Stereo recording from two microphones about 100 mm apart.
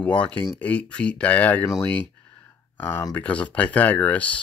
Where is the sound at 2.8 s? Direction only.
20° left (ahead or behind).